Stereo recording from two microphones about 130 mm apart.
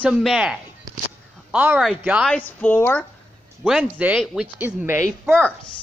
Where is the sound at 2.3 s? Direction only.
15° left (ahead or behind).